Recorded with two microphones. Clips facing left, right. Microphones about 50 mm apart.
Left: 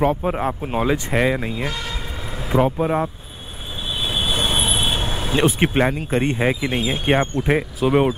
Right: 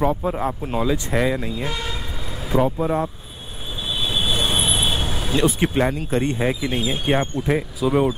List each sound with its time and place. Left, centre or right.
0.0 s speech: left
2.3 s vehicle: centre
2.6 s speech: left
3.8 s vehicle: centre
5.0 s vehicle: centre
5.4 s speech: left
5.9 s speech: left